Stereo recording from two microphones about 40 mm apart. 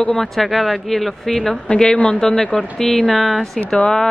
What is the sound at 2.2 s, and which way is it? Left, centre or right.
A woman's voice, centre.